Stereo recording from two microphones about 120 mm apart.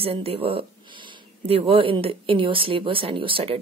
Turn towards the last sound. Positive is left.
turn(degrees=-50)  # may be behind; listen again after turning